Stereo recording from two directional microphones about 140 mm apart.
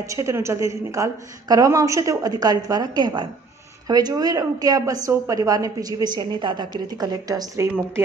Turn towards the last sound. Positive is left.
turn(degrees=-25)  # may be behind; listen again after turning